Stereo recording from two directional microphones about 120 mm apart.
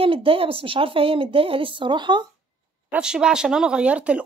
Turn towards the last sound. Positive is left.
turn(degrees=-10)  # may be behind; listen again after turning